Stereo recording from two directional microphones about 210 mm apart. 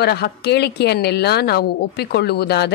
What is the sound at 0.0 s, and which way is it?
A woman's voice, 50° left (ahead or behind).